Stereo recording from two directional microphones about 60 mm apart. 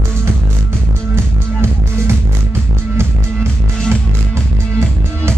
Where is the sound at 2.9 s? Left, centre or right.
Right.